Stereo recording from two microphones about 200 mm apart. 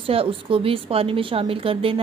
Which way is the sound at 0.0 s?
30° right (ahead or behind).